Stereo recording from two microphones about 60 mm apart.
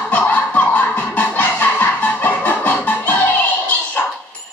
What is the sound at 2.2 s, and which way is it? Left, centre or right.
Music, left.